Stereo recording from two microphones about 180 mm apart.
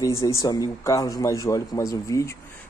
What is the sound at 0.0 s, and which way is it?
Speech, 15° left (ahead or behind).